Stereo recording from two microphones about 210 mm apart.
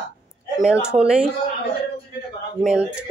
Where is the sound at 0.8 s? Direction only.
5° right (ahead or behind).